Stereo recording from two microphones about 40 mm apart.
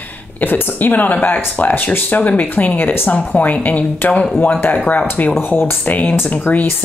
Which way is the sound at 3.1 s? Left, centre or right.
Left.